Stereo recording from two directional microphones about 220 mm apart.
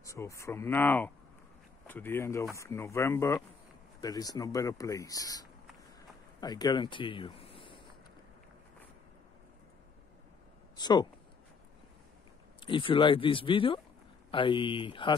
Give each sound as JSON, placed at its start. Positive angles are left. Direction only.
{"t": 0.0, "sound": "speech", "side_deg": 15}
{"t": 10.8, "sound": "speech", "side_deg": 20}
{"t": 12.5, "sound": "speech", "side_deg": 20}